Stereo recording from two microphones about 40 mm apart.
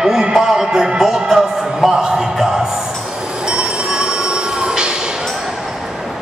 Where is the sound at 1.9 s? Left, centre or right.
Centre.